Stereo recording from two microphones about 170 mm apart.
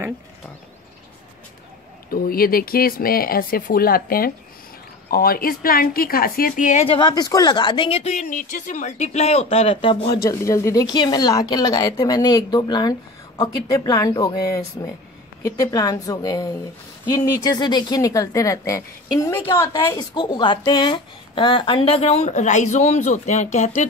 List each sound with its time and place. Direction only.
2.0 s speech: 60° left (ahead or behind)
6.9 s speech: 25° left (ahead or behind)
10.2 s speech: 20° left (ahead or behind); by 23.9 s 45° left (ahead or behind)